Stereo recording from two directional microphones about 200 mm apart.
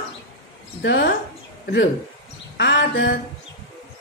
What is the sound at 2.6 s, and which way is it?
Speech, 60° left (ahead or behind).